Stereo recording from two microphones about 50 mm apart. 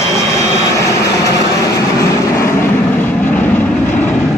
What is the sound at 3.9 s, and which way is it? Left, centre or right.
Vehicle, left.